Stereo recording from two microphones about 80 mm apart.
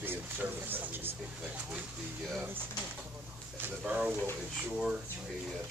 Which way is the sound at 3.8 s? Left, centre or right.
Centre.